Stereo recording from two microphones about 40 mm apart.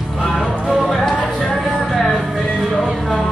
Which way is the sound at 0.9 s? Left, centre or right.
Centre.